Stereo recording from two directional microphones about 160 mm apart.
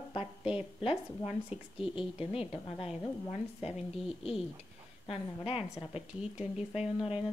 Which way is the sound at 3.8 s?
5° right (ahead or behind).